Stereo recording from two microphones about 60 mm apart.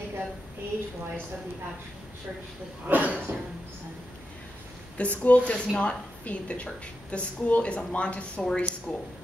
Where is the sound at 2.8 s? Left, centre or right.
Right.